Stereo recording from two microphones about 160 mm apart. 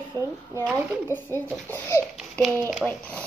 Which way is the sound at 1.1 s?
15° left (ahead or behind).